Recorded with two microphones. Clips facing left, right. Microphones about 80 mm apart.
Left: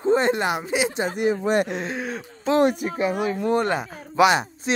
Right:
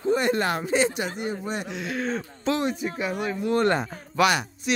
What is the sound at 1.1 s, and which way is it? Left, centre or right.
Speech, left.